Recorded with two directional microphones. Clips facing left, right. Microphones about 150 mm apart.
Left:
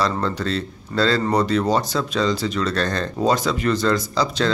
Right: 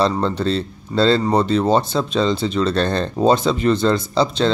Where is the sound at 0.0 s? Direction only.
25° right (ahead or behind).